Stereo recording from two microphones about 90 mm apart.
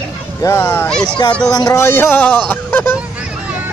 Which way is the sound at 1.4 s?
45° left (ahead or behind).